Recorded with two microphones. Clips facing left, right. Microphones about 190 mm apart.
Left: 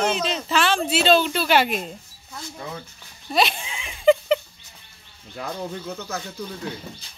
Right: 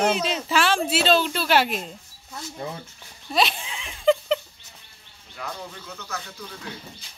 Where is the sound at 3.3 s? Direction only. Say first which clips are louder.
Left 1 dB; centre (ahead or behind).